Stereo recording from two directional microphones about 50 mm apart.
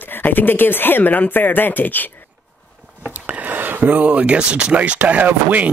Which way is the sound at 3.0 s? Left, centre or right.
Right.